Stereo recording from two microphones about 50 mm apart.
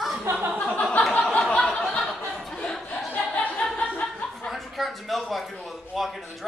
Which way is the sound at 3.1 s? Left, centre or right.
Left.